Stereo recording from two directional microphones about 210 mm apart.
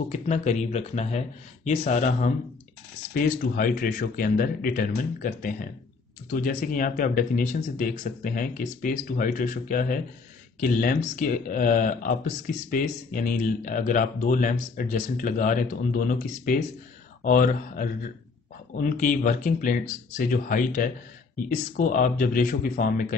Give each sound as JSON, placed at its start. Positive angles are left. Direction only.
{"t": 0.1, "sound": "speech", "side_deg": 35}
{"t": 3.5, "sound": "speech", "side_deg": 40}